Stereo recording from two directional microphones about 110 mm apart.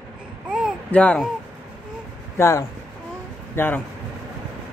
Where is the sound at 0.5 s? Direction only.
5° right (ahead or behind).